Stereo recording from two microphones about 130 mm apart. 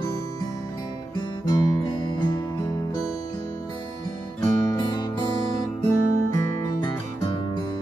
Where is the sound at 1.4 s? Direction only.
30° left (ahead or behind).